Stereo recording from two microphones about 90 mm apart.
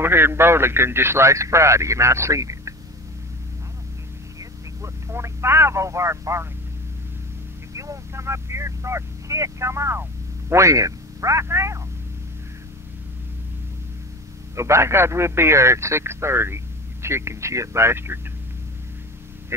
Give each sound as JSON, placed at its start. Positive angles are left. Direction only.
{"t": 0.0, "sound": "a man's voice", "side_deg": -25}
{"t": 4.4, "sound": "telephone", "side_deg": -35}
{"t": 7.7, "sound": "a man's voice", "side_deg": -35}
{"t": 14.5, "sound": "speech", "side_deg": -35}